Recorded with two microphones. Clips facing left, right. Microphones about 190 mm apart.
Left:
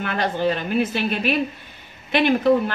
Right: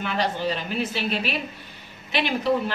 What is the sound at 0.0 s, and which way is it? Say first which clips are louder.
A woman's voice: left 3 dB; 55° left (ahead or behind).